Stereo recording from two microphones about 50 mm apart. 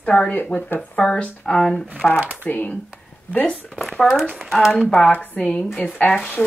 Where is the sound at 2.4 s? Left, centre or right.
Left.